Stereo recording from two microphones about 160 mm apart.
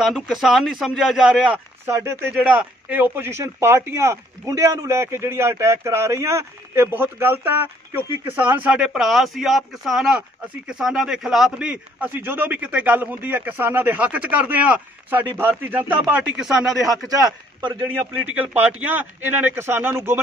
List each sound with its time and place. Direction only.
0.0 s a man's voice: centre (ahead or behind)
1.9 s speech: 15° right (ahead or behind)
16.8 s a man's voice: 20° right (ahead or behind)
17.9 s speech: 10° right (ahead or behind)